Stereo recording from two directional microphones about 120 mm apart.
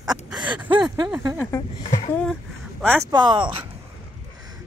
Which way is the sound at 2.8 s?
15° right (ahead or behind).